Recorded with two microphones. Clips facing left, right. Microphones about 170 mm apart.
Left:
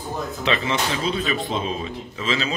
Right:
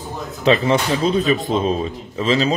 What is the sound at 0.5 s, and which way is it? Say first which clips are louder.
Speech: right 8 dB; 40° right (ahead or behind).